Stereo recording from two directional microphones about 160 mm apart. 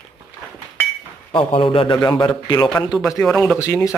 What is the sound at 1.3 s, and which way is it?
A man's voice, 35° left (ahead or behind).